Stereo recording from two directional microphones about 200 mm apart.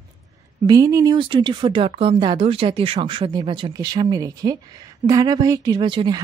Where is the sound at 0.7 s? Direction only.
15° right (ahead or behind).